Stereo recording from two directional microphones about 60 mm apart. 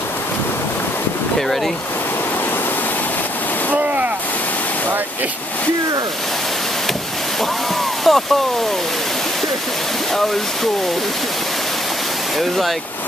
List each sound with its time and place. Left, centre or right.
3.7 s boat: right
8.1 s speech: centre
12.4 s speech: centre